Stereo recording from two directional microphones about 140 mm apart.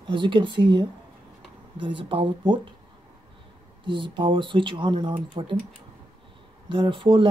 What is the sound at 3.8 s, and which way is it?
Speech, 35° right (ahead or behind).